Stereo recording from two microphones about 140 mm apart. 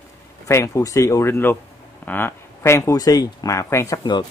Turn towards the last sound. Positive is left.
turn(degrees=30)  # may be behind; listen again after turning